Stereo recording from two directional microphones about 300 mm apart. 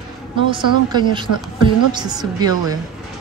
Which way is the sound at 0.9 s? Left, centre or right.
Centre.